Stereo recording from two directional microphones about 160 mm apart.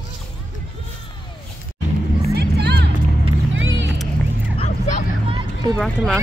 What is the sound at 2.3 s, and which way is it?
Music, 90° right.